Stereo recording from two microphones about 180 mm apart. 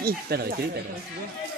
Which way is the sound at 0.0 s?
60° right (ahead or behind).